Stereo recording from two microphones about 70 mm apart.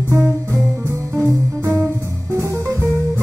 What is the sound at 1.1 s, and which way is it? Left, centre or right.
Music, right.